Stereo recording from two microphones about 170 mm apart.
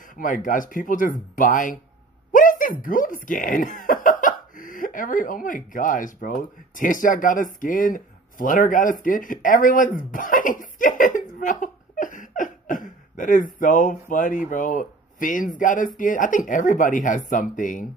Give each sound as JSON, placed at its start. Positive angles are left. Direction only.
{"t": 0.1, "sound": "speech", "side_deg": 50}